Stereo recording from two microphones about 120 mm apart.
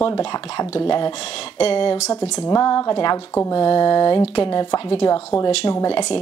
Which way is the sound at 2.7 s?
45° left (ahead or behind).